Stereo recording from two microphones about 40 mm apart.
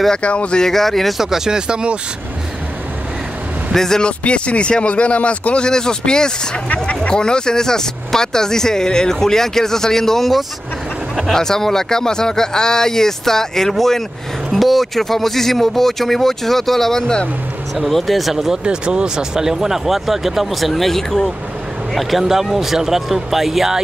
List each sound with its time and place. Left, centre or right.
0.2 s speech: left
0.6 s speech: centre
1.1 s speech: centre
3.7 s speech: centre
4.0 s speech: left
5.7 s speech: centre
18.6 s speech: right; by 21.3 s centre
22.2 s speech: centre